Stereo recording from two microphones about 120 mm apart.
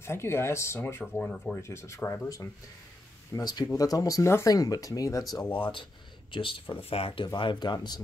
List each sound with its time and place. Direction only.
0.0 s speech: 20° left (ahead or behind)
1.2 s speech: 10° left (ahead or behind)
1.6 s speech: 25° left (ahead or behind)
5.4 s speech: 10° left (ahead or behind)
6.3 s speech: 45° left (ahead or behind)
7.3 s speech: 40° left (ahead or behind)